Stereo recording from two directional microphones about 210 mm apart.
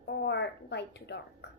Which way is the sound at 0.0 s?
55° left (ahead or behind).